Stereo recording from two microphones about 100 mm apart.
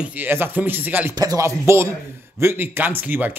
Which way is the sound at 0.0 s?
15° right (ahead or behind).